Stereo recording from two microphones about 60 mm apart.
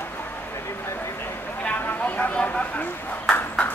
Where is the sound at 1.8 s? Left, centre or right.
Left.